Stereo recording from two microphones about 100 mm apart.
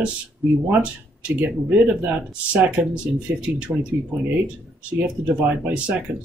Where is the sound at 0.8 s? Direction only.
15° right (ahead or behind).